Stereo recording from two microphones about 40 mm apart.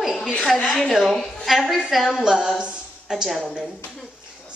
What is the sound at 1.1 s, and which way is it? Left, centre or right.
Speech, centre.